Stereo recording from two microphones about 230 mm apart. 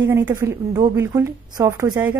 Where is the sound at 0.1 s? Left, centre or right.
Centre.